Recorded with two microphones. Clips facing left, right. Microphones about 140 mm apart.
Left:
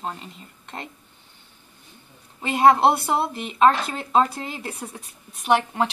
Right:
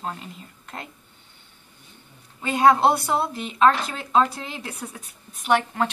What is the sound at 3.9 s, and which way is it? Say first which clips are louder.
Speech: left 2 dB; 30° left (ahead or behind).